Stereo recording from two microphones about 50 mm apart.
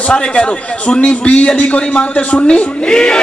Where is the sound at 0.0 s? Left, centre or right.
Left.